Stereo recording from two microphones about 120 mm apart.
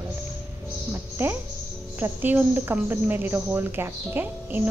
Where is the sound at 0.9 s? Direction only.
15° right (ahead or behind).